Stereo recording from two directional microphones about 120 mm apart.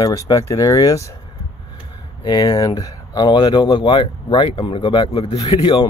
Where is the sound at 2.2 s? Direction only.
35° left (ahead or behind).